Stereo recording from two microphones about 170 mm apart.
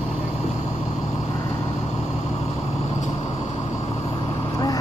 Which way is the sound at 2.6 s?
35° left (ahead or behind).